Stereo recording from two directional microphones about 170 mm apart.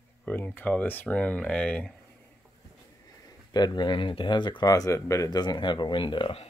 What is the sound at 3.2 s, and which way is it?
Speech, 25° left (ahead or behind).